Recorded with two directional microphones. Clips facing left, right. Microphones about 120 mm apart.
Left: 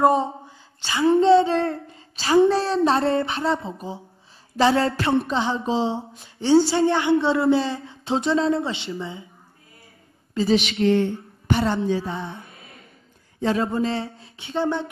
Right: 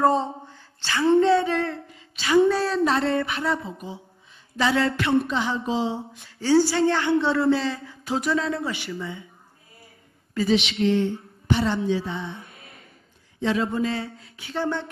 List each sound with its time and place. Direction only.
0.5 s a sound: 15° left (ahead or behind)
1.2 s a woman's voice: 25° left (ahead or behind)
4.6 s a sound: 30° left (ahead or behind)
5.2 s a woman's voice: 30° left (ahead or behind)
10.4 s a woman's voice: 25° left (ahead or behind)
10.8 s music: 55° left (ahead or behind)
13.4 s a woman's voice: 35° left (ahead or behind)